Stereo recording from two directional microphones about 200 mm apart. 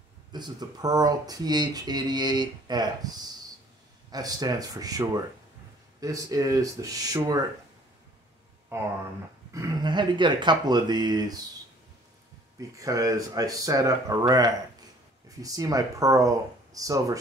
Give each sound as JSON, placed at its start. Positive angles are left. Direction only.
{"t": 0.3, "sound": "speech", "side_deg": -20}
{"t": 8.7, "sound": "speech", "side_deg": -15}
{"t": 12.5, "sound": "speech", "side_deg": -15}